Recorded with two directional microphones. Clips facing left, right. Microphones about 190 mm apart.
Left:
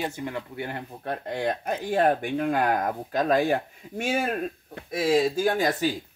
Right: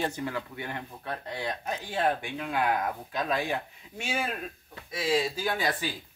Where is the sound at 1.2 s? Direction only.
50° left (ahead or behind).